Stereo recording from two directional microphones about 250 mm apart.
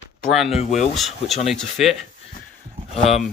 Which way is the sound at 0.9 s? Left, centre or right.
Centre.